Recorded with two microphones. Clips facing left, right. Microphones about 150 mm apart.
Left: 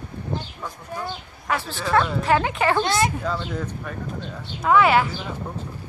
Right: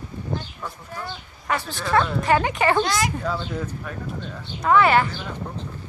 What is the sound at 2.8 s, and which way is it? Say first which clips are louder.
Speech: left 2 dB; 25° left (ahead or behind).